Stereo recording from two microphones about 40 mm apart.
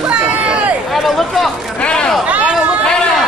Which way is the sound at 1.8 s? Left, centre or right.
Left.